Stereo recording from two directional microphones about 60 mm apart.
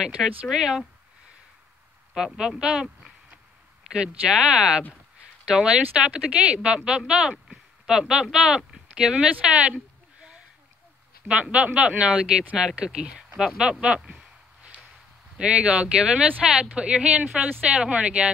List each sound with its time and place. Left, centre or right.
0.0 s speech: centre
2.1 s speech: centre
11.2 s speech: centre
13.4 s a sound: centre
15.3 s speech: centre